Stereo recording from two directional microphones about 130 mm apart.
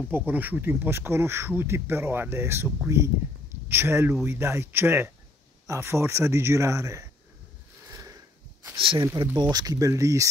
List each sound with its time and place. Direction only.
0.1 s speech: 15° right (ahead or behind)
7.9 s a sound: 25° right (ahead or behind)
8.7 s speech: 40° right (ahead or behind)
9.0 s speech: 25° right (ahead or behind)